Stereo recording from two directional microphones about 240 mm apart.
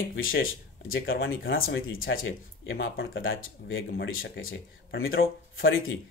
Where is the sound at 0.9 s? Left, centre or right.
Left.